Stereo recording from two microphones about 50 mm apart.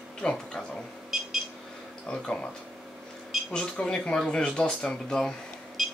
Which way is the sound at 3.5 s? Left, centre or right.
Centre.